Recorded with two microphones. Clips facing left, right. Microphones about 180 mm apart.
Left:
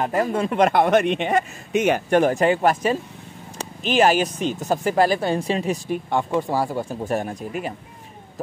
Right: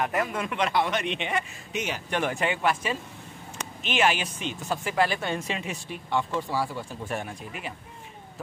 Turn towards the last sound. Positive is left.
turn(degrees=45)  # may be behind; listen again after turning